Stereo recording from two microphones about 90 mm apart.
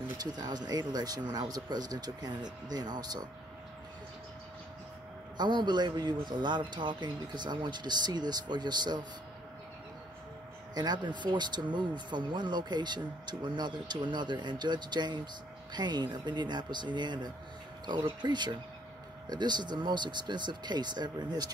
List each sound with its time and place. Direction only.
0.2 s speech: 50° right (ahead or behind)
5.4 s speech: 55° right (ahead or behind)
10.7 s speech: 50° right (ahead or behind)